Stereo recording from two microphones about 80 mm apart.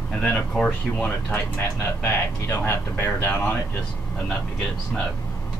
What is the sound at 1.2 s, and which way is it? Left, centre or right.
Speech, left.